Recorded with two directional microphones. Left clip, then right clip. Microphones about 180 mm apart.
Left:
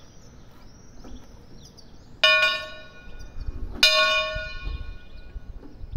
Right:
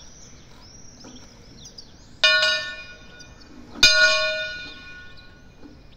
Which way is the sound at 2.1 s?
45° left (ahead or behind).